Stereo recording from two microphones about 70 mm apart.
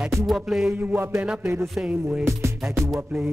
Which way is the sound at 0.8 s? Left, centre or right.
Right.